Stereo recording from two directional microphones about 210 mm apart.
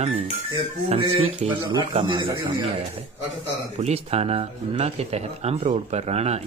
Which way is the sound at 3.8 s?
30° right (ahead or behind).